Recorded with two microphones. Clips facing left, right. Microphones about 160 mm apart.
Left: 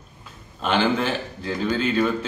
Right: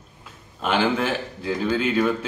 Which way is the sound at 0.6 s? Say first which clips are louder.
Even; 10° right (ahead or behind).